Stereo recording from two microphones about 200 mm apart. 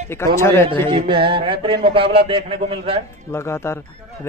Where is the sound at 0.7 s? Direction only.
25° right (ahead or behind).